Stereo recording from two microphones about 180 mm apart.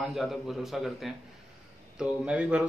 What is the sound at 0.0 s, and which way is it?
A man's voice, centre (ahead or behind).